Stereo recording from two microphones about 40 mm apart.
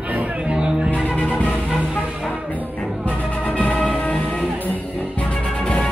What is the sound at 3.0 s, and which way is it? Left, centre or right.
Music, left.